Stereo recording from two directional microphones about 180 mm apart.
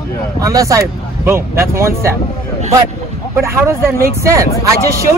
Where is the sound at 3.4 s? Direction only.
15° right (ahead or behind).